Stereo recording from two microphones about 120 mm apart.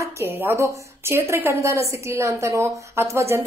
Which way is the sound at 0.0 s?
20° right (ahead or behind).